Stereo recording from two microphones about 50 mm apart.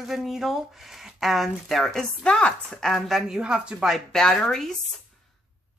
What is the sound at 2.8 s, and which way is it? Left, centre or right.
Speech, centre.